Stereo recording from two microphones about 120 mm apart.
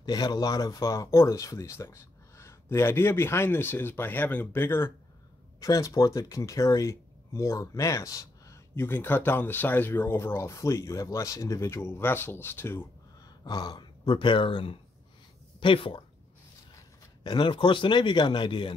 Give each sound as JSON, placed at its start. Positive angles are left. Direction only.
{"t": 0.0, "sound": "speech", "side_deg": 35}
{"t": 13.4, "sound": "speech", "side_deg": 35}
{"t": 17.2, "sound": "speech", "side_deg": 40}